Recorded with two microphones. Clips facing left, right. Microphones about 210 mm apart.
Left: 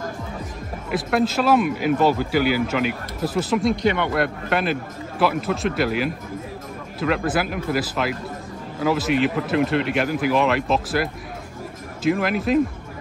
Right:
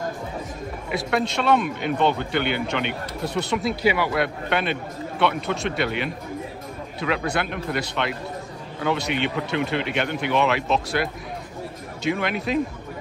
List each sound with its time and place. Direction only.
0.8 s speech: centre (ahead or behind)